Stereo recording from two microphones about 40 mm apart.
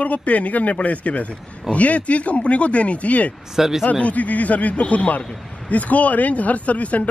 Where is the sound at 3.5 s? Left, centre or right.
Centre.